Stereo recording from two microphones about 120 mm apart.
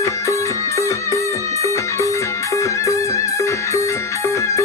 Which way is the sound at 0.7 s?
25° left (ahead or behind).